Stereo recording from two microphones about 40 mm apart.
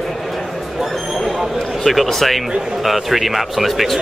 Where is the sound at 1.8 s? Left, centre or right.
Centre.